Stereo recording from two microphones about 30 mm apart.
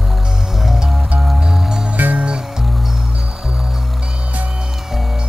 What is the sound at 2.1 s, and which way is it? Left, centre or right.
Music, right.